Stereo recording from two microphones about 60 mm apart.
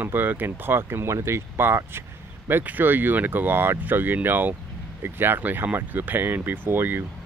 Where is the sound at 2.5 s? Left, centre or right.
Right.